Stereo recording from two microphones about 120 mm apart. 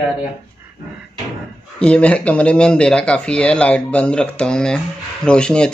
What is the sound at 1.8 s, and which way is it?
Speech, 10° left (ahead or behind).